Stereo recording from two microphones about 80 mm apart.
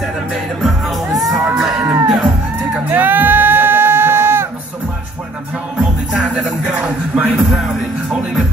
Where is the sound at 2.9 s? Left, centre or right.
Right.